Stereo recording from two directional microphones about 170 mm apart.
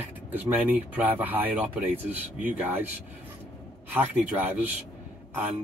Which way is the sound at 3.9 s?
10° right (ahead or behind).